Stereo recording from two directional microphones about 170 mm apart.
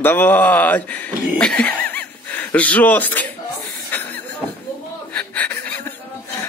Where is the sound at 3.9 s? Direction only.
10° left (ahead or behind).